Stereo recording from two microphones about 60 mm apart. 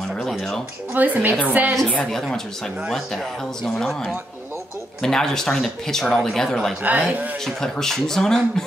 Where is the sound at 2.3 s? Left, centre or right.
Centre.